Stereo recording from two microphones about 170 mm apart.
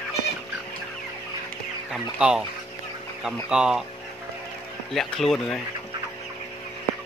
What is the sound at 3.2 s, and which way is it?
Speech, 5° right (ahead or behind).